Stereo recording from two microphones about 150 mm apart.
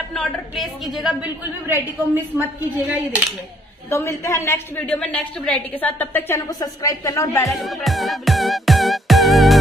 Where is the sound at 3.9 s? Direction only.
20° left (ahead or behind).